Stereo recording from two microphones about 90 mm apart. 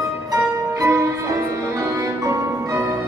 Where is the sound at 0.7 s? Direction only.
35° right (ahead or behind).